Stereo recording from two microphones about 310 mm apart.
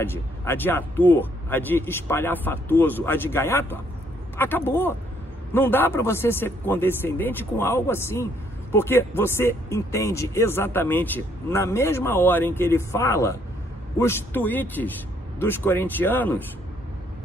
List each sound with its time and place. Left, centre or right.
0.0 s a man's voice: centre